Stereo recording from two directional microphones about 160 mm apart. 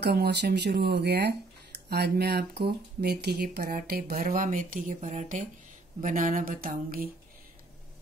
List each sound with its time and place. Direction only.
0.0 s speech: 85° right; by 7.1 s 65° right (ahead or behind)